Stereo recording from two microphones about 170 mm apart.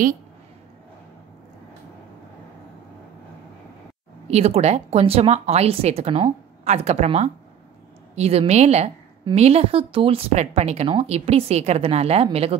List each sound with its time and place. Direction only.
4.3 s speech: 40° right (ahead or behind)